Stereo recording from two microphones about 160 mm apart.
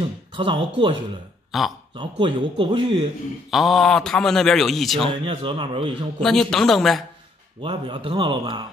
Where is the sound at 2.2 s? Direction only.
30° right (ahead or behind).